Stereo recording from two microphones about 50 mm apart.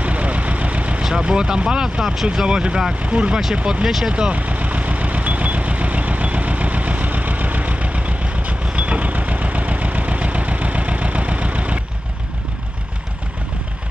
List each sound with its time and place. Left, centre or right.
0.0 s vehicle: right
1.0 s speech: centre
3.8 s speech: centre
4.1 s vehicle: right